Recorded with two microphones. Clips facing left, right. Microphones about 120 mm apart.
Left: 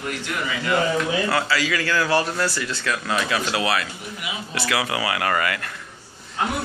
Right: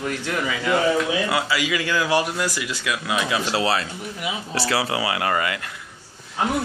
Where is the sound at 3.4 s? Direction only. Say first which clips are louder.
Right 1 dB; 30° right (ahead or behind).